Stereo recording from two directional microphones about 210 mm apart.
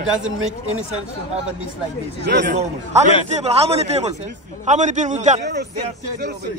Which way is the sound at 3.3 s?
30° right (ahead or behind).